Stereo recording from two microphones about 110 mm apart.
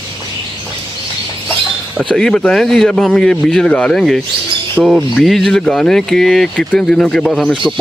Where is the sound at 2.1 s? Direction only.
5° left (ahead or behind).